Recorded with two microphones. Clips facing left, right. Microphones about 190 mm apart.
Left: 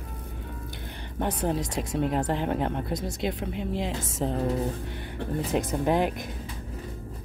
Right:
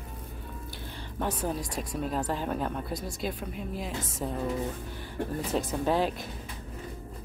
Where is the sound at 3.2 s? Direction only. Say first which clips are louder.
Left 5 dB; 85° left.